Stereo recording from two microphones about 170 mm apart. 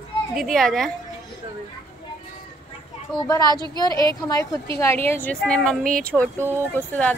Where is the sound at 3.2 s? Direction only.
25° left (ahead or behind).